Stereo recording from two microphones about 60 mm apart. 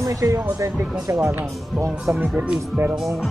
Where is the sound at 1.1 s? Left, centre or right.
Right.